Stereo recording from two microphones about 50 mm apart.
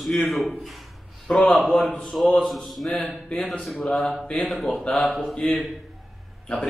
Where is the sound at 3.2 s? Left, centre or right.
Left.